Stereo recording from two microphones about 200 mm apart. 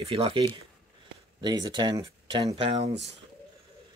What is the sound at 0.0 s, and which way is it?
Speech, 30° right (ahead or behind).